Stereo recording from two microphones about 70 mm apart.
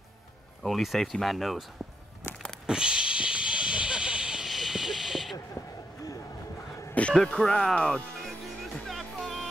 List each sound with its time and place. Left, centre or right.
0.7 s speech: centre
2.6 s a sound: centre
6.9 s music: centre
7.2 s speech: centre
8.2 s music: centre